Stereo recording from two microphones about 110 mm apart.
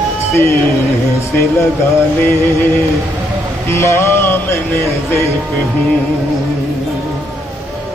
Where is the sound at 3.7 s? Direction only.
25° left (ahead or behind).